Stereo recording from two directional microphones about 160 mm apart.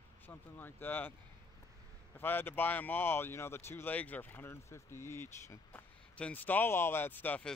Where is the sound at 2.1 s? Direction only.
10° left (ahead or behind).